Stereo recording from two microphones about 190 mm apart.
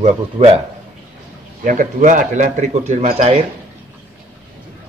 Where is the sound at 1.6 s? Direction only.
45° right (ahead or behind).